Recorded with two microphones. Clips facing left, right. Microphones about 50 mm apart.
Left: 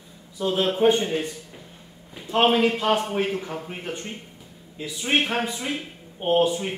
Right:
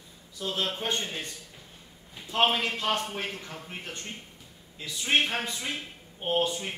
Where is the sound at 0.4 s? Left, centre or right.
Centre.